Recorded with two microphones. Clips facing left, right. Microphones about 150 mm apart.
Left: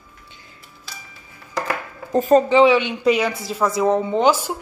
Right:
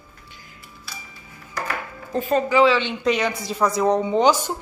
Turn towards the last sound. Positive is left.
turn(degrees=5)  # may be behind; listen again after turning